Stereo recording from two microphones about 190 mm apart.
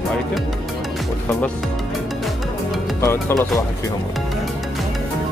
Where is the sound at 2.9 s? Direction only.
15° left (ahead or behind).